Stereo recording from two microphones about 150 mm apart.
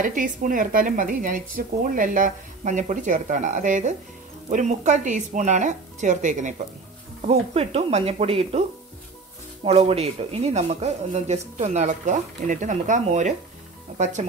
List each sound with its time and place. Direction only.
0.0 s speech: 60° right (ahead or behind)
7.2 s speech: 45° right (ahead or behind)
9.7 s speech: 45° right (ahead or behind)